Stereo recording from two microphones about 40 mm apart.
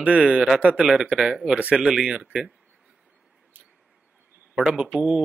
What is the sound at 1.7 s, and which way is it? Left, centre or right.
Speech, centre.